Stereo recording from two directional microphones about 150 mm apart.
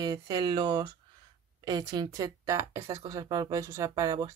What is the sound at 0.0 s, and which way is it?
Speech, 30° right (ahead or behind).